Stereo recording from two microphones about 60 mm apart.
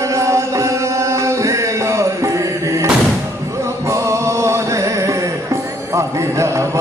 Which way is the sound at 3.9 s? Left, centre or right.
Right.